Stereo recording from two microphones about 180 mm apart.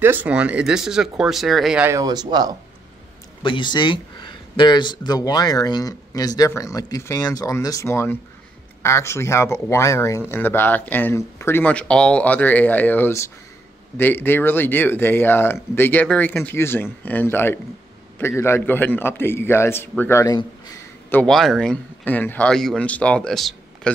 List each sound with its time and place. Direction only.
0.0 s speech: 10° right (ahead or behind)
1.9 s speech: 20° right (ahead or behind)
3.4 s speech: 25° left (ahead or behind); by 23.9 s centre (ahead or behind)